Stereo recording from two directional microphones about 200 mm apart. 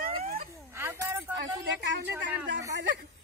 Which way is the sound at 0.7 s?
15° right (ahead or behind).